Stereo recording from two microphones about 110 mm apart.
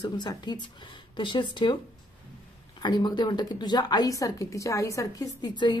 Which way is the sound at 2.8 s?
45° left (ahead or behind).